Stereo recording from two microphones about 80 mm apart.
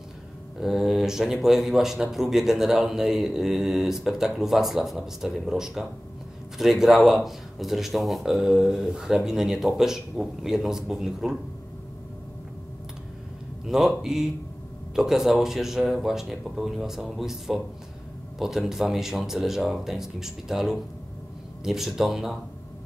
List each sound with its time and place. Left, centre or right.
0.6 s speech: centre
13.7 s speech: centre